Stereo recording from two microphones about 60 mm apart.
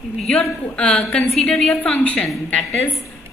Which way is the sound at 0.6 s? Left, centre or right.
Centre.